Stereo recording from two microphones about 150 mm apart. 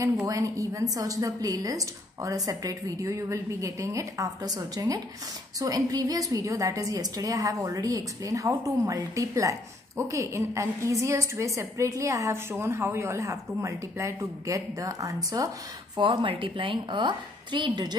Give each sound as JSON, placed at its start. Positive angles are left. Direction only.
{"t": 0.3, "sound": "a woman's voice", "side_deg": -20}